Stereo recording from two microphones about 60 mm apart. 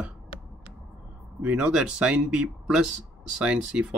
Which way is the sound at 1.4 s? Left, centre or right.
Right.